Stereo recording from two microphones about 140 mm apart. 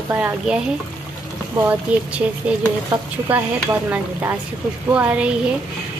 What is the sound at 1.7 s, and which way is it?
Speech, 10° right (ahead or behind).